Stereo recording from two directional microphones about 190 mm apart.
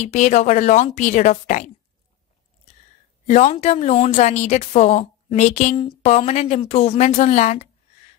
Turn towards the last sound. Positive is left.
turn(degrees=35)  # may be behind; listen again after turning